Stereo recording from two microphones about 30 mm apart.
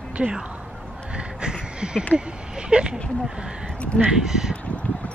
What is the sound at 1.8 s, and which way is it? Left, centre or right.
Speech, right.